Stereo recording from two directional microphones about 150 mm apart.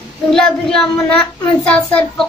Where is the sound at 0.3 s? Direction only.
5° left (ahead or behind).